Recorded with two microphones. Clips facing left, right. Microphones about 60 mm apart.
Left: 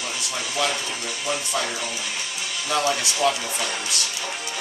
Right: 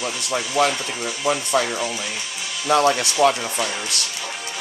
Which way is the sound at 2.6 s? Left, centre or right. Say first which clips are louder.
Right 6 dB; right.